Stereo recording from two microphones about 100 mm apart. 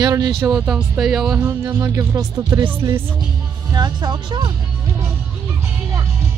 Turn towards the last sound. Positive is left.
turn(degrees=-45)  # may be behind; listen again after turning